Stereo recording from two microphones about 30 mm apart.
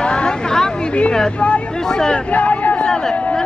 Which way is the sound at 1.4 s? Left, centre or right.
Left.